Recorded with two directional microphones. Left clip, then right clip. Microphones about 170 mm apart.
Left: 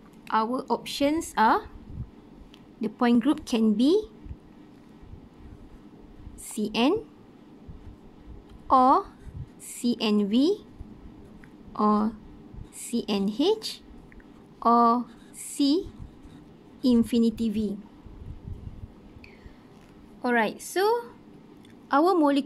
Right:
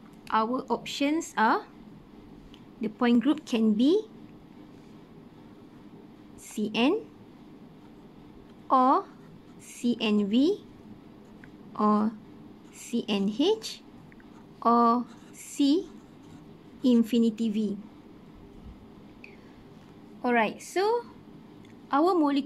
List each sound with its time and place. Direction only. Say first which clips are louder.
0.3 s a woman's voice: left 1 dB; 15° left (ahead or behind)
2.8 s a woman's voice: left 2 dB; 15° left (ahead or behind)
6.5 s a woman's voice: left 2 dB; 10° left (ahead or behind)
8.6 s a woman's voice: left 3 dB; 15° left (ahead or behind)
11.7 s a woman's voice: left 1 dB; 15° left (ahead or behind)
16.8 s a woman's voice: left 1 dB; 10° left (ahead or behind)
20.2 s a woman's voice: left 1 dB; 15° left (ahead or behind)